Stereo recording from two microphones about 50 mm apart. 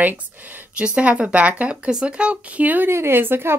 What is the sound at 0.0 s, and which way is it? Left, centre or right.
Speech, right.